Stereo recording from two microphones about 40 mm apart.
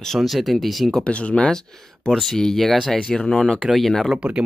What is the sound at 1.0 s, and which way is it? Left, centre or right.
Speech, left.